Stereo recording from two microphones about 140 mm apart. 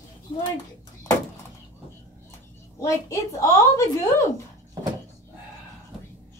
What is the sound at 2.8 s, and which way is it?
A woman's voice, 20° left (ahead or behind).